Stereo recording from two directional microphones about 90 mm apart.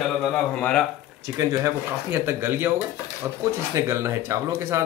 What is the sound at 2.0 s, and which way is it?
Speech, 25° right (ahead or behind).